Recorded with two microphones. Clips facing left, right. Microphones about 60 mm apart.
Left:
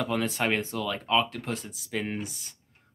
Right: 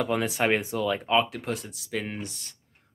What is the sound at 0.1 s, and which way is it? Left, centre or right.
Speech, centre.